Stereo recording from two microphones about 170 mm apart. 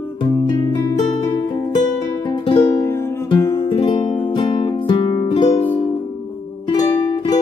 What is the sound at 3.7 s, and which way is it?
Music, 30° left (ahead or behind).